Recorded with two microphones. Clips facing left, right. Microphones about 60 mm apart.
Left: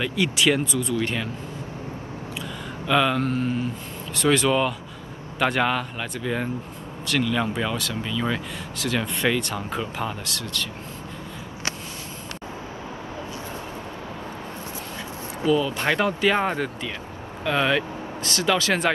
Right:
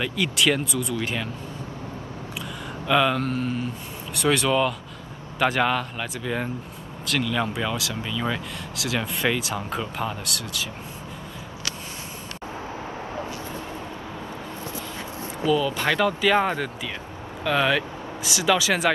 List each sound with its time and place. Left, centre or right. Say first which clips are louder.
0.0 s speech: left 1 dB; centre
2.9 s speech: even; centre
15.4 s speech: left 1 dB; centre
16.2 s speech: right 1 dB; centre
18.2 s speech: right 1 dB; centre